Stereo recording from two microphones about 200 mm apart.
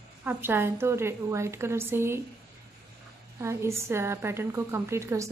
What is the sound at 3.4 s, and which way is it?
A woman's voice, 15° right (ahead or behind).